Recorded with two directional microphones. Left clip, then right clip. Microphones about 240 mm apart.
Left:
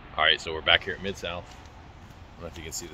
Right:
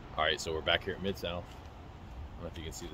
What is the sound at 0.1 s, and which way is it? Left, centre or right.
Speech, centre.